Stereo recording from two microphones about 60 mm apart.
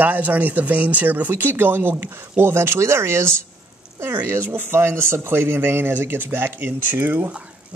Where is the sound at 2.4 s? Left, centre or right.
Right.